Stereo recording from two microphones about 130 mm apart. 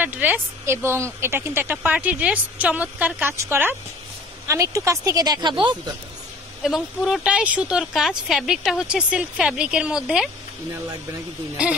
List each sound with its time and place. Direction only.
0.0 s speech: 15° right (ahead or behind); by 5.9 s 35° right (ahead or behind)
6.6 s speech: centre (ahead or behind)